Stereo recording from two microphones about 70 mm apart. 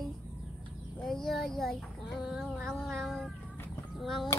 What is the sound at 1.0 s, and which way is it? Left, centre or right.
Speech, centre.